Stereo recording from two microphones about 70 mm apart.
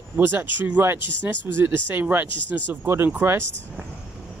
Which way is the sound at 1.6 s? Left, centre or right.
Right.